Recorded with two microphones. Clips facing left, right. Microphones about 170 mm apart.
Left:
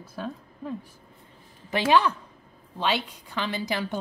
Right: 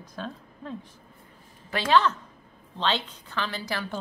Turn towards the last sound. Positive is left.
turn(degrees=20)  # may be behind; listen again after turning